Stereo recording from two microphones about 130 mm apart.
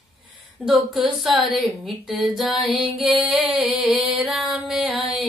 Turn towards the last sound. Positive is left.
turn(degrees=0)  # may be behind; listen again after turning